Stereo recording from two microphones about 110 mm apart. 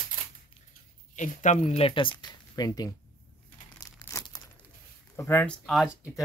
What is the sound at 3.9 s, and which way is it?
Crumpling, 35° left (ahead or behind).